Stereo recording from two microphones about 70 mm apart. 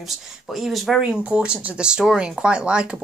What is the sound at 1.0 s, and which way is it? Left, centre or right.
Speech, centre.